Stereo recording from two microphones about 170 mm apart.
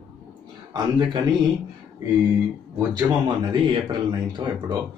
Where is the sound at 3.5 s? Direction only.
25° right (ahead or behind).